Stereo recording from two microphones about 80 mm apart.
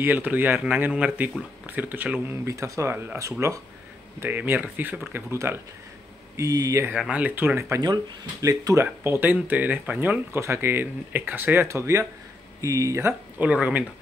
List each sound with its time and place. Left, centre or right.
0.0 s speech: right
2.4 s speech: right
4.2 s speech: right
6.3 s speech: right
7.1 s speech: centre
7.8 s speech: right
9.0 s speech: right
11.6 s speech: right
13.4 s speech: centre